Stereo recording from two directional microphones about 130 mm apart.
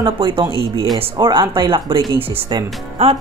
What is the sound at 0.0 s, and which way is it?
Speech, 40° right (ahead or behind).